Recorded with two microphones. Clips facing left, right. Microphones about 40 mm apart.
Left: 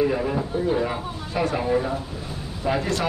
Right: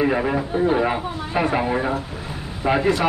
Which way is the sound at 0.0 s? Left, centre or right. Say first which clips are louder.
Right 2 dB; right.